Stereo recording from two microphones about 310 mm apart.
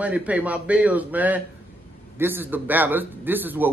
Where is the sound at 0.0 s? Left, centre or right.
Centre.